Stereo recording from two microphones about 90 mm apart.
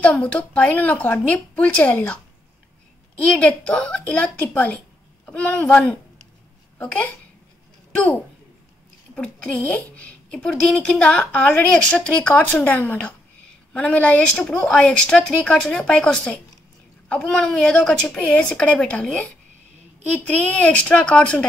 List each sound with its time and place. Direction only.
0.0 s a woman's voice: 15° left (ahead or behind)
3.2 s a woman's voice: 15° left (ahead or behind)
6.8 s a woman's voice: 15° left (ahead or behind)